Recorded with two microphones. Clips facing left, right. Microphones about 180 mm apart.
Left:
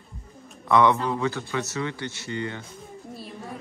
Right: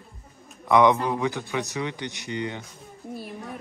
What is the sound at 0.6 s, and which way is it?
Speech, 15° right (ahead or behind).